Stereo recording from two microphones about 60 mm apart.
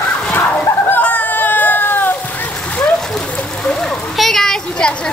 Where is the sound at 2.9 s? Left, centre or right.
Centre.